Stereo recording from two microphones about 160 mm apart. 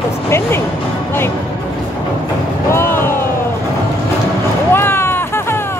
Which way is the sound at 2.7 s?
15° left (ahead or behind).